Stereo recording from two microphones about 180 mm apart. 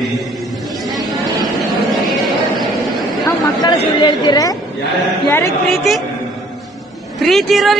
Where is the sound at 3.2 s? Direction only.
25° left (ahead or behind).